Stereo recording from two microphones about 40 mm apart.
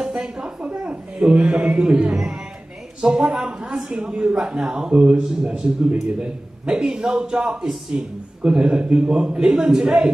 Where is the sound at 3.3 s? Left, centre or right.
Right.